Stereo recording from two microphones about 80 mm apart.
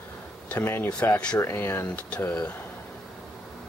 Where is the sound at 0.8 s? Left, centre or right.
Centre.